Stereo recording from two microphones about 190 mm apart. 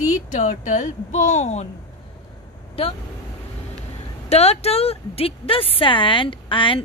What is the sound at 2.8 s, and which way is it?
Speech, 30° left (ahead or behind).